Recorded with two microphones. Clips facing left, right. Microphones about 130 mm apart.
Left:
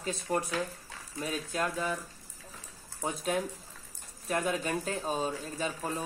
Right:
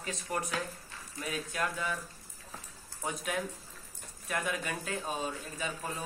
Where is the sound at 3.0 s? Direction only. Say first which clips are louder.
Left 4 dB; 30° left (ahead or behind).